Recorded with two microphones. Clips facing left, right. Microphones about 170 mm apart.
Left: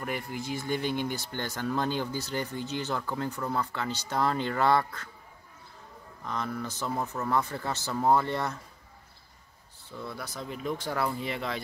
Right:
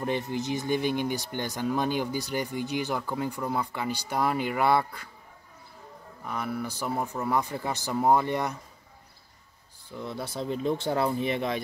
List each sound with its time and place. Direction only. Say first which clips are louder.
0.0 s speech: right 5 dB; 25° right (ahead or behind)
6.2 s speech: right 2 dB; 10° right (ahead or behind)
9.8 s speech: right 4 dB; 20° right (ahead or behind)